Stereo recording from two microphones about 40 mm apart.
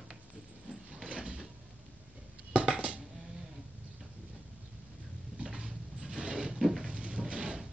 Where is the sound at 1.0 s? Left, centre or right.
Right.